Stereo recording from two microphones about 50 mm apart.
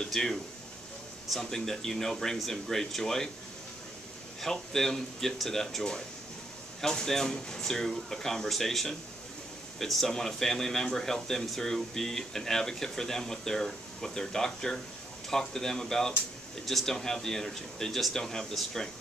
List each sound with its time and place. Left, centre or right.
0.1 s speech: centre
4.4 s speech: centre